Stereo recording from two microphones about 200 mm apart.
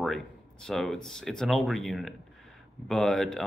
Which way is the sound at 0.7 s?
Centre (ahead or behind).